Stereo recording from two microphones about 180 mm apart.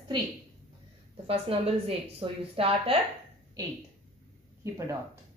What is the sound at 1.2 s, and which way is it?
A woman's voice, 30° right (ahead or behind).